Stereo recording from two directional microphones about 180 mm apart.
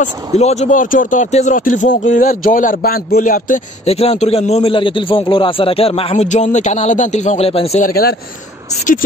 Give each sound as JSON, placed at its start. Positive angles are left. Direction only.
{"t": 0.0, "sound": "speech", "side_deg": 35}
{"t": 7.8, "sound": "speech", "side_deg": 60}